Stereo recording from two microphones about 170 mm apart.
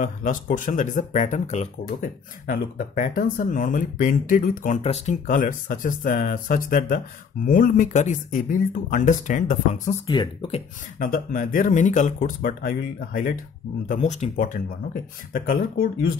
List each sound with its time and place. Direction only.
0.0 s speech: 50° left (ahead or behind)
4.8 s speech: 40° left (ahead or behind)
5.2 s speech: 55° left (ahead or behind)
10.0 s speech: 30° left (ahead or behind)
11.0 s speech: 55° left (ahead or behind)